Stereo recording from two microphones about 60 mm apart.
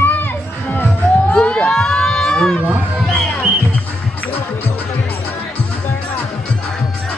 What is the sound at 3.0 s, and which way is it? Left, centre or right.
Music, centre.